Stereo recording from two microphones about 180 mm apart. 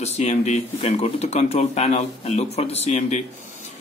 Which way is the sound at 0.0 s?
35° left (ahead or behind).